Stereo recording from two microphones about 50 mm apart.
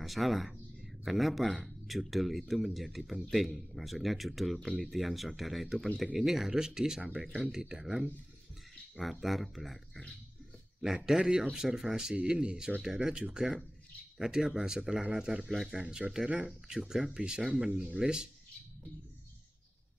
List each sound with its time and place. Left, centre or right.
0.0 s speech: centre
7.0 s speech: right
7.5 s speech: centre
8.9 s speech: centre
11.1 s speech: centre
15.5 s speech: centre